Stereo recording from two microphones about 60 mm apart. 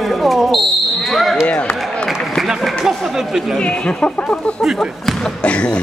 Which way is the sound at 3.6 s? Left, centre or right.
Centre.